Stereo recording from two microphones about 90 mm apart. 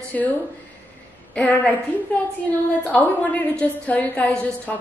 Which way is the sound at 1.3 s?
15° left (ahead or behind).